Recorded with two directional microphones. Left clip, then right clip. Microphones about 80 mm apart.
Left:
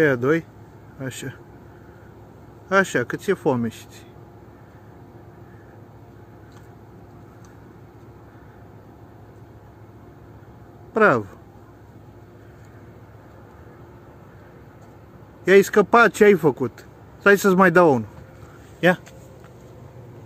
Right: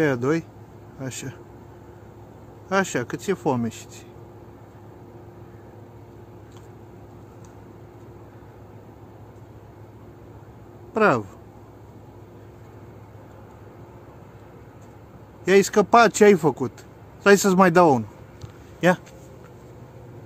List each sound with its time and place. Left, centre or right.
0.0 s speech: centre
2.7 s speech: centre
10.9 s speech: left
15.4 s speech: centre